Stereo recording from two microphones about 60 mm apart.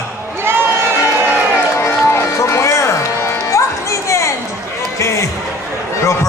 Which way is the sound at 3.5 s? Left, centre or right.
Left.